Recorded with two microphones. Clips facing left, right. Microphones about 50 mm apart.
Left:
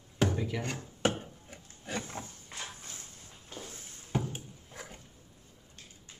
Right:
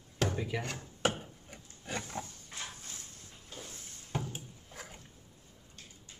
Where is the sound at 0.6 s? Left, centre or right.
Centre.